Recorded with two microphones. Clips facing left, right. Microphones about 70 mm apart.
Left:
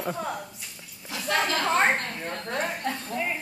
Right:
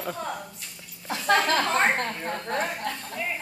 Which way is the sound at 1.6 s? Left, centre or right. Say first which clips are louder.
Left 1 dB; centre.